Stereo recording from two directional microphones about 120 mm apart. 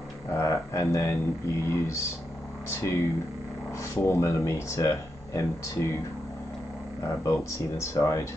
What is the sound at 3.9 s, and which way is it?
Speech, 25° left (ahead or behind).